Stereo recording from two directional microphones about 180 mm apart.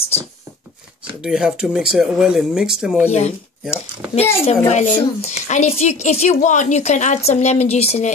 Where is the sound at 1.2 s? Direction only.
5° right (ahead or behind).